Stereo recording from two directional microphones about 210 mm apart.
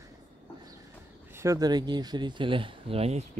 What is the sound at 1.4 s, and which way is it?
Speech, 15° right (ahead or behind).